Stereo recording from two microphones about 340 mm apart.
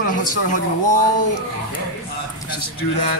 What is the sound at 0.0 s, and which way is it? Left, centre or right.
Speech, left.